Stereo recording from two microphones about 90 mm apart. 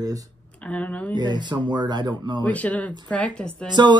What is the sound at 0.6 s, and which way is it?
Speech, 15° left (ahead or behind).